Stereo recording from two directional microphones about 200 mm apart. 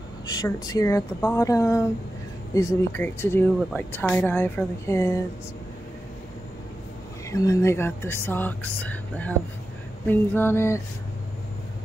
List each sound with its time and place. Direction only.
0.3 s speech: 20° left (ahead or behind)
7.2 s speech: 15° left (ahead or behind)